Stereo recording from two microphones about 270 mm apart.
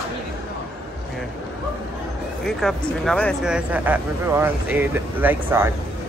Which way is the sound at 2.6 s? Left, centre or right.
Centre.